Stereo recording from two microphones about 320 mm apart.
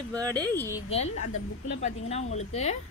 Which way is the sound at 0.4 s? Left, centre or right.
Centre.